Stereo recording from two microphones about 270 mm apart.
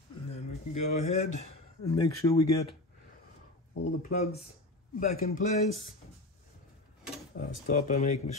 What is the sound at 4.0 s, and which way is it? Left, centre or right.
A man's voice, left.